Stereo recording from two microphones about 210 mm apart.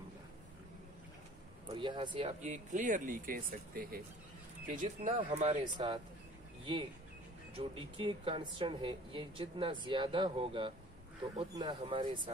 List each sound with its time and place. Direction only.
1.7 s speech: 20° right (ahead or behind)